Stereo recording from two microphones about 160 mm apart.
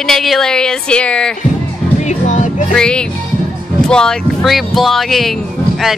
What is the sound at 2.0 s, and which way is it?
Music, 50° left (ahead or behind).